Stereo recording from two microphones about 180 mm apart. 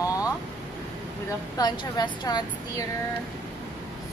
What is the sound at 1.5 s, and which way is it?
A woman's voice, 20° left (ahead or behind).